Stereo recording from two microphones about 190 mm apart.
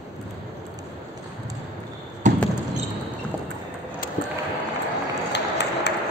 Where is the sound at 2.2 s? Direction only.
40° right (ahead or behind).